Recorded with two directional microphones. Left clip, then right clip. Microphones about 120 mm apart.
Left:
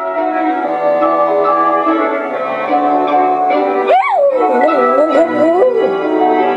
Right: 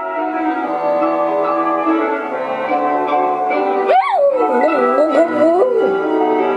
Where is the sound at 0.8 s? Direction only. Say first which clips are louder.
Left 4 dB; 50° left (ahead or behind).